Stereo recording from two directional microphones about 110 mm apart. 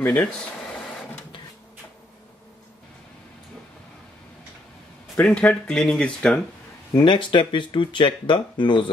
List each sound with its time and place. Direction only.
0.0 s speech: 15° left (ahead or behind)
5.2 s speech: 10° left (ahead or behind)
6.9 s speech: 45° left (ahead or behind)